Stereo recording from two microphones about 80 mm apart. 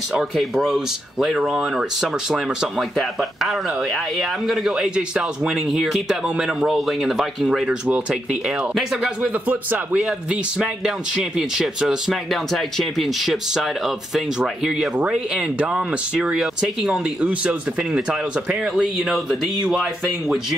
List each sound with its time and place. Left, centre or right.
0.1 s speech: centre
9.2 s a man's voice: centre
10.0 s speech: centre
17.2 s speech: centre